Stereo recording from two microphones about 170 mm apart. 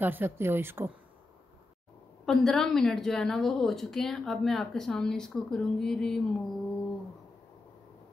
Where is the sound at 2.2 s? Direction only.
Centre (ahead or behind).